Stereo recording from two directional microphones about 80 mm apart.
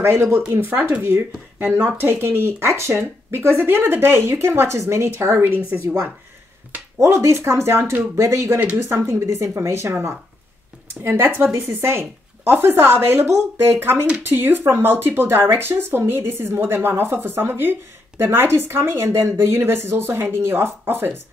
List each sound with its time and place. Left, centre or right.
0.0 s speech: right
7.0 s speech: right